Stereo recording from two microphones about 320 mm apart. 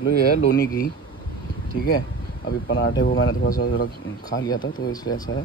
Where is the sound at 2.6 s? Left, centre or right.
Left.